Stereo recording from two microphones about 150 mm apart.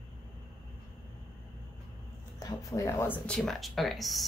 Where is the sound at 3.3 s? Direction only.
5° left (ahead or behind).